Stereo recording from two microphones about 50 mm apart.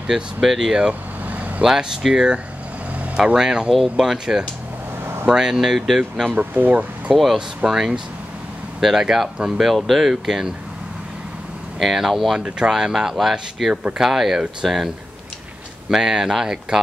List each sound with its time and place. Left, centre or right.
0.0 s speech: centre
1.2 s vehicle: right
1.6 s speech: centre
3.3 s speech: centre
6.3 s speech: right
7.3 s speech: centre
11.8 s speech: centre
12.4 s speech: centre
15.9 s speech: centre